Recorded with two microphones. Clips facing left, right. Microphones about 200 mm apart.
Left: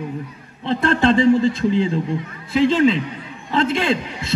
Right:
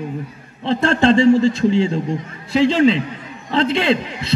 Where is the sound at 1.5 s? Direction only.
55° left (ahead or behind).